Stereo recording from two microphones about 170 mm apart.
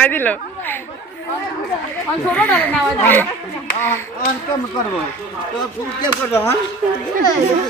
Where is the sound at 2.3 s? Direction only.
10° left (ahead or behind).